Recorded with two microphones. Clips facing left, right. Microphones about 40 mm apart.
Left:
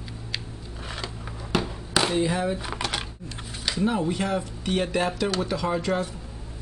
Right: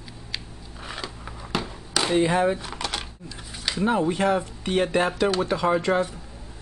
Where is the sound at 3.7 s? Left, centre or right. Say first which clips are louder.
Right 2 dB; centre.